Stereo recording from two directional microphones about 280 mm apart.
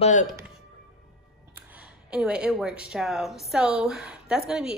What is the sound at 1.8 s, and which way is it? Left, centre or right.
Speech, centre.